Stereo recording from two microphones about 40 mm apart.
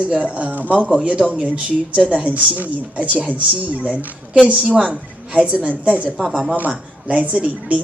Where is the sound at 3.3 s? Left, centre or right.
Right.